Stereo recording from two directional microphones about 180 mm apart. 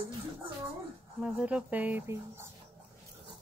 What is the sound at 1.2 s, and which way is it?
Speech, 5° right (ahead or behind).